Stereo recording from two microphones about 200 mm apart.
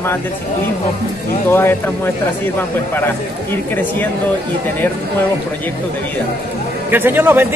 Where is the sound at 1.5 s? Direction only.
10° left (ahead or behind).